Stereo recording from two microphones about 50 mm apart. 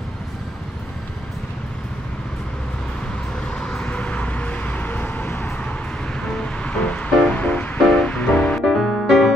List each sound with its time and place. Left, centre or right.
3.3 s vehicle: centre
6.2 s music: left
8.8 s music: centre